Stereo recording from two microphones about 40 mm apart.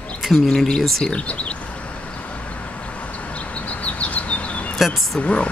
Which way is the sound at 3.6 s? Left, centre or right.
Left.